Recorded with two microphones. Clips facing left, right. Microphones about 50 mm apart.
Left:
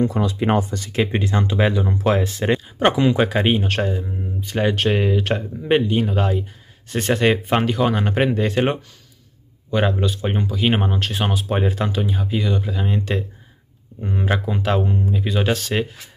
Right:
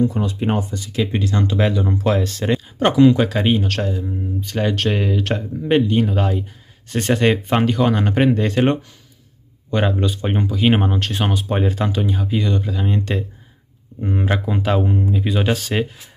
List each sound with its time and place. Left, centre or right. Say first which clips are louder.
0.1 s speech: left 2 dB; left
0.9 s speech: even; left
1.4 s speech: right 1 dB; centre